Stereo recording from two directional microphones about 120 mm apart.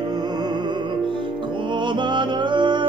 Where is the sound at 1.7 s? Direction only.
40° right (ahead or behind).